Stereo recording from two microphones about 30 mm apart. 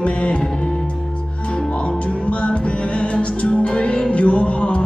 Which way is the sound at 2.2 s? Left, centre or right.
Left.